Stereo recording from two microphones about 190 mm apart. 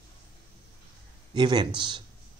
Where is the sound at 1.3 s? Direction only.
25° right (ahead or behind).